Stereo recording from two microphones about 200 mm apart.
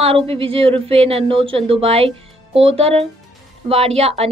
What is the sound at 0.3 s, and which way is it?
Speech, 30° right (ahead or behind).